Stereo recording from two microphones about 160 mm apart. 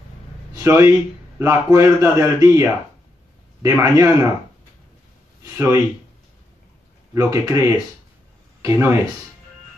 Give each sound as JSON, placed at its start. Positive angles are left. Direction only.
{"t": 0.6, "sound": "a man's voice", "side_deg": -15}
{"t": 5.4, "sound": "speech", "side_deg": -15}
{"t": 7.2, "sound": "a man's voice", "side_deg": -20}